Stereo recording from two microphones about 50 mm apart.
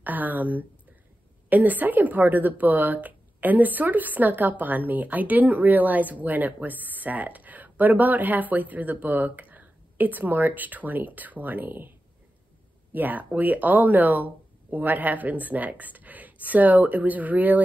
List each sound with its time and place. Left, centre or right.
0.0 s a woman's voice: right
12.9 s a woman's voice: right